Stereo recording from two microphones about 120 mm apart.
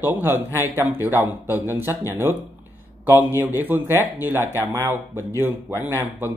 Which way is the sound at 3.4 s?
15° right (ahead or behind).